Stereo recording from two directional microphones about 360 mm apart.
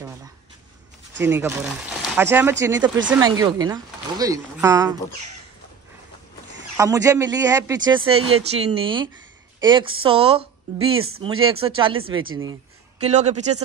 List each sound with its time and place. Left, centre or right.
1.2 s speech: centre
6.8 s speech: centre
8.2 s speech: right
8.5 s speech: centre
13.0 s speech: centre